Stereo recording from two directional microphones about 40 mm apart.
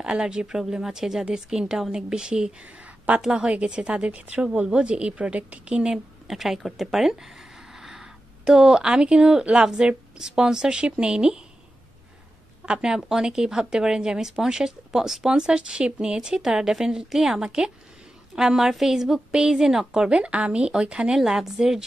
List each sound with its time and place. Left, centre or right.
0.0 s a woman's voice: right
2.6 s a sound: right
3.3 s a woman's voice: right
6.2 s a woman's voice: centre
12.6 s speech: centre
15.3 s a woman's voice: right
20.1 s a woman's voice: right
21.2 s speech: centre